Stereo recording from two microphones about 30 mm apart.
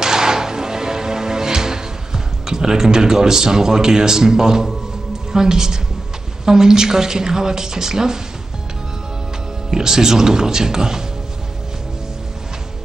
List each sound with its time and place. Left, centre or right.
0.0 s music: right
5.3 s a woman's voice: centre
9.7 s a woman's voice: centre